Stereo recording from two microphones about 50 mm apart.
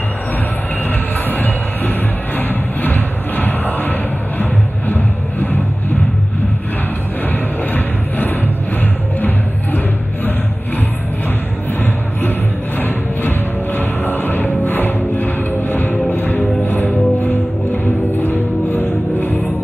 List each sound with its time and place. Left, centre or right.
1.3 s music: left
7.2 s music: left
11.8 s music: left